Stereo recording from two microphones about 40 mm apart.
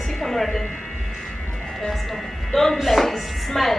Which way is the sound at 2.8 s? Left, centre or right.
Centre.